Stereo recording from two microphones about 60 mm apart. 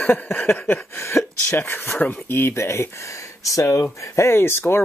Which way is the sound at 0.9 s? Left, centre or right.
Left.